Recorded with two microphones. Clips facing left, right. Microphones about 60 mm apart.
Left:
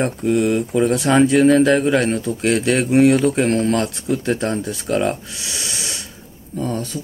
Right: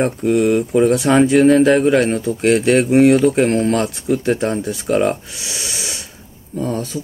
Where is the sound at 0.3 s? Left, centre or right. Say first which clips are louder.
Right 3 dB; centre.